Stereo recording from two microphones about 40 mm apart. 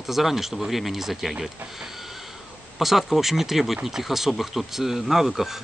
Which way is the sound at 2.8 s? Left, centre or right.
Centre.